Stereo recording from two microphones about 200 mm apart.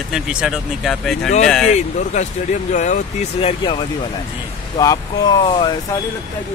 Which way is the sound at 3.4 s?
25° left (ahead or behind).